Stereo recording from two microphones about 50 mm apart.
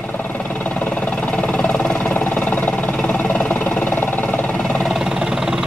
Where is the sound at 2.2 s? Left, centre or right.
Left.